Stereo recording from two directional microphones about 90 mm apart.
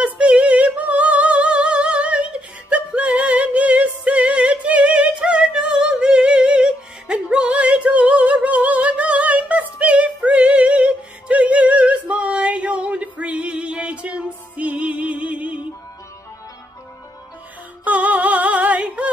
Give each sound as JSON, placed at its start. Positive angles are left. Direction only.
{"t": 0.0, "sound": "music", "side_deg": -10}
{"t": 17.8, "sound": "music", "side_deg": -15}